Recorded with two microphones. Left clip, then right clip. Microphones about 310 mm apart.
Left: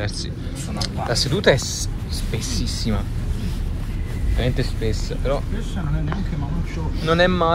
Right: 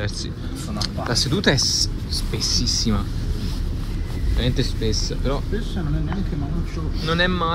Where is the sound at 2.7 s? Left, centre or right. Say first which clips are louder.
Right 4 dB; centre.